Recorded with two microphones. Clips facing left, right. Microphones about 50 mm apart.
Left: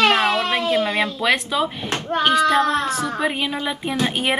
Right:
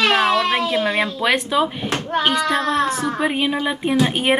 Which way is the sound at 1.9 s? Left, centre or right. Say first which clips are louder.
Left 2 dB; right.